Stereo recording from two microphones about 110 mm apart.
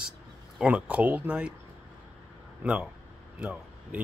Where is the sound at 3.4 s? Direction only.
10° right (ahead or behind).